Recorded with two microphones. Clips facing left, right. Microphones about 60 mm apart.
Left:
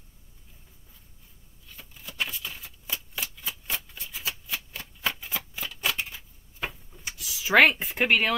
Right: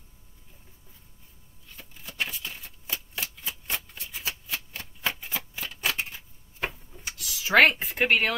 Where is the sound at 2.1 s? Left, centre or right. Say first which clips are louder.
Even; centre.